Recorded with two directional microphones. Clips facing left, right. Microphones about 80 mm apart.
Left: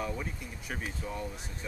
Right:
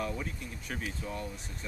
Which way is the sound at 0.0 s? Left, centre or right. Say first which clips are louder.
Even; centre.